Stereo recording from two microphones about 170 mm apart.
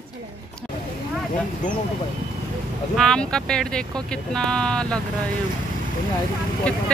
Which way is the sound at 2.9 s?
5° left (ahead or behind).